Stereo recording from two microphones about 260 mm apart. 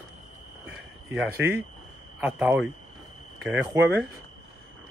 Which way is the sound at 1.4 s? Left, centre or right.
Right.